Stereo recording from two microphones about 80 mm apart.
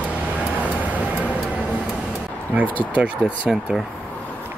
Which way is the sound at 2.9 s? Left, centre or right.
Centre.